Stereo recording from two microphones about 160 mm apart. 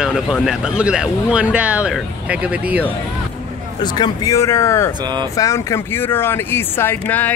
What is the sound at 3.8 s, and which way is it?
Speech, 25° left (ahead or behind).